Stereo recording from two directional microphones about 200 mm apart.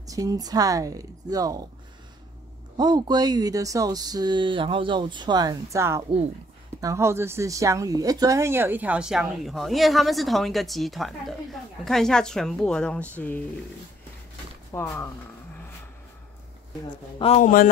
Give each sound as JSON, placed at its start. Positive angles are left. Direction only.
{"t": 0.0, "sound": "speech", "side_deg": -15}
{"t": 2.8, "sound": "a woman's voice", "side_deg": -20}
{"t": 14.7, "sound": "speech", "side_deg": 10}
{"t": 17.2, "sound": "speech", "side_deg": 30}